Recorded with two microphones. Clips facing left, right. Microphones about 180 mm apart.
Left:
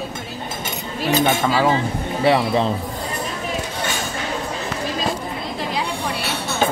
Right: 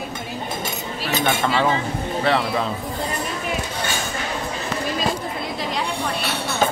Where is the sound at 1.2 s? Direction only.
5° left (ahead or behind).